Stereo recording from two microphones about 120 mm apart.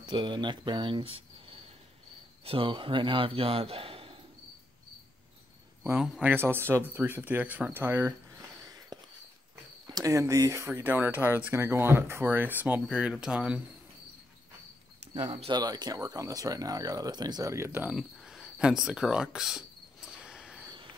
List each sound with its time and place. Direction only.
0.0 s a man's voice: 40° right (ahead or behind)
6.2 s speech: 20° right (ahead or behind)
8.6 s a sound: 30° right (ahead or behind)
9.8 s speech: 30° right (ahead or behind); by 13.6 s 5° right (ahead or behind)
15.5 s speech: 35° right (ahead or behind)
17.9 s a sound: centre (ahead or behind)